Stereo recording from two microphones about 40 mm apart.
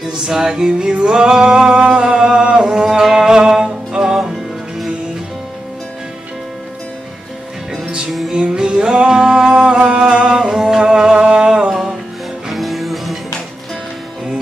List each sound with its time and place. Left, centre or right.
0.2 s music: centre
2.9 s music: centre
8.3 s music: right
11.7 s music: centre